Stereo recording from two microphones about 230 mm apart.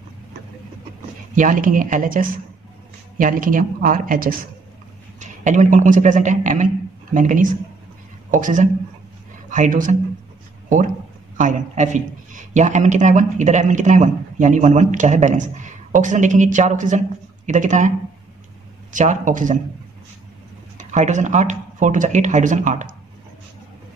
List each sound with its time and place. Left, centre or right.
1.3 s a man's voice: right
11.3 s a man's voice: right
20.7 s a man's voice: right